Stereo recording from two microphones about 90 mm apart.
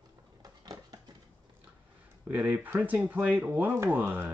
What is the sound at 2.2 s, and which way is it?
Speech, 15° right (ahead or behind).